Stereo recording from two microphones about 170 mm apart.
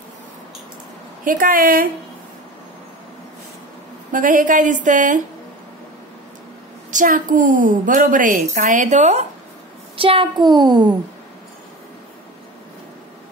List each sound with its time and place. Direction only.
1.2 s a woman's voice: 55° right (ahead or behind)
4.1 s a woman's voice: 50° right (ahead or behind)
6.9 s a woman's voice: 50° right (ahead or behind)
9.9 s a child's voice: 30° right (ahead or behind)